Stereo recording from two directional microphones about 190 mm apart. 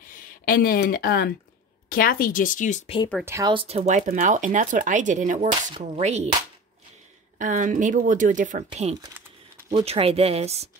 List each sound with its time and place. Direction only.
0.1 s speech: 50° left (ahead or behind)
3.3 s speech: 15° right (ahead or behind)
3.5 s speech: 35° right (ahead or behind)
7.3 s speech: 40° right (ahead or behind)